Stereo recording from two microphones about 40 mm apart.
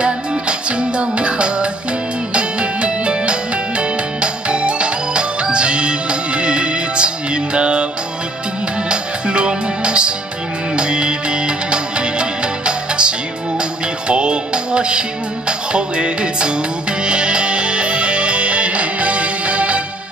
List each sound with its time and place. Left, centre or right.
0.0 s music: right
8.8 s music: right